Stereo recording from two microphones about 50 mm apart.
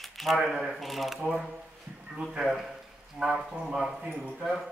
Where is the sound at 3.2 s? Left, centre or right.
Centre.